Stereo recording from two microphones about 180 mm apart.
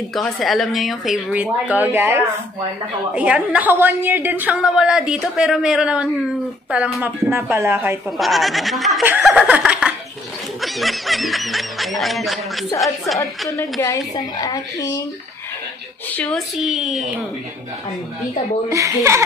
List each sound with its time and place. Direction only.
0.1 s a woman's voice: centre (ahead or behind)
8.2 s a woman's voice: centre (ahead or behind)
9.0 s laughter: 10° right (ahead or behind)
10.6 s a woman's voice: centre (ahead or behind)
13.5 s a woman's voice: 15° left (ahead or behind)
16.2 s a woman's voice: 5° left (ahead or behind)
18.7 s a woman's voice: 15° right (ahead or behind)